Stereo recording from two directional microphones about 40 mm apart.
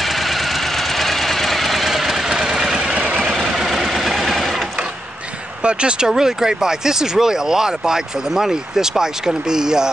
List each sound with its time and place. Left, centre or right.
0.0 s engine: centre
2.2 s vehicle: centre
2.9 s vehicle: right
3.3 s vehicle: centre
5.6 s speech: right